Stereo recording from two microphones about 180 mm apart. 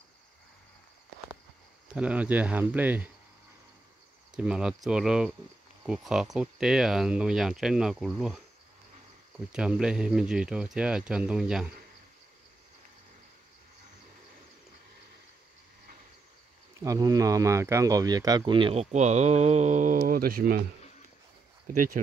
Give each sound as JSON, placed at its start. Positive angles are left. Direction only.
{"t": 2.0, "sound": "speech", "side_deg": -5}
{"t": 4.4, "sound": "speech", "side_deg": -5}
{"t": 9.5, "sound": "speech", "side_deg": -5}
{"t": 16.8, "sound": "speech", "side_deg": -20}
{"t": 21.6, "sound": "speech", "side_deg": -45}